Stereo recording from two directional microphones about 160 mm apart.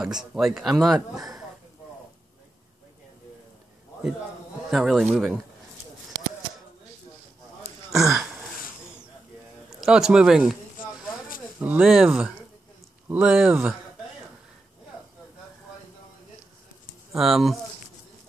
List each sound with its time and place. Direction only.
0.0 s speech: 5° right (ahead or behind)
4.6 s speech: centre (ahead or behind)
8.0 s a sound: 20° right (ahead or behind)
8.3 s a sound: 5° right (ahead or behind)
9.7 s a man's voice: 5° right (ahead or behind)
11.6 s speech: 5° right (ahead or behind)
17.1 s speech: centre (ahead or behind)